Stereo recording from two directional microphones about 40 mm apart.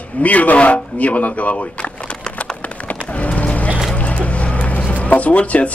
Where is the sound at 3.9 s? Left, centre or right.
Left.